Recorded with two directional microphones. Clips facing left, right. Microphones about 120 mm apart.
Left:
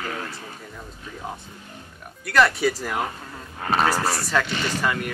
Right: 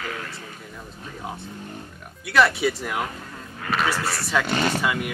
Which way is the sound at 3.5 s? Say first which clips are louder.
Left 3 dB; 35° left (ahead or behind).